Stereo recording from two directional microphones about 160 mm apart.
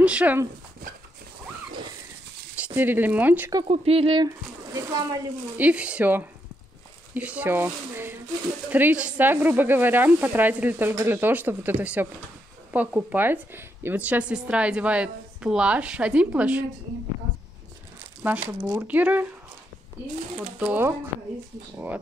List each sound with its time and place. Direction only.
0.0 s a woman's voice: 10° right (ahead or behind)
2.6 s a woman's voice: 10° right (ahead or behind)
3.6 s speech: 40° right (ahead or behind)
4.7 s speech: 20° right (ahead or behind)
5.6 s a woman's voice: 10° right (ahead or behind)
18.4 s a woman's voice: 10° right (ahead or behind)
20.5 s a woman's voice: 10° right (ahead or behind)